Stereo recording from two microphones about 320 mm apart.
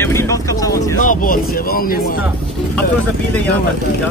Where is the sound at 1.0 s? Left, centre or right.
Left.